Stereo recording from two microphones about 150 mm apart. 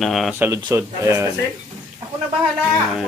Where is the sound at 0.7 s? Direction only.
20° right (ahead or behind).